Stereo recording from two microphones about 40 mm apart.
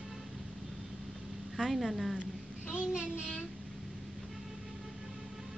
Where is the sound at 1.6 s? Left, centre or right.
Centre.